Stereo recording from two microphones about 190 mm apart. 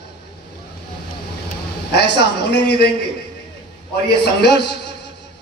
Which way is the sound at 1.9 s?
60° left (ahead or behind).